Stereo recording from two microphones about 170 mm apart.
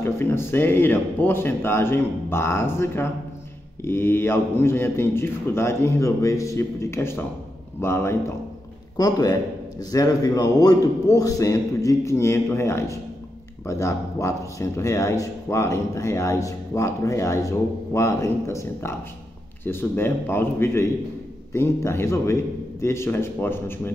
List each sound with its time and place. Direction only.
0.0 s a man's voice: 15° left (ahead or behind)